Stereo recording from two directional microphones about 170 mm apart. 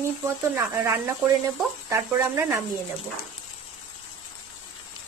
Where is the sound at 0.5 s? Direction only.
15° right (ahead or behind).